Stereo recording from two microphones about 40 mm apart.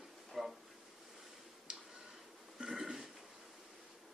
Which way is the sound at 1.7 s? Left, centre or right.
Centre.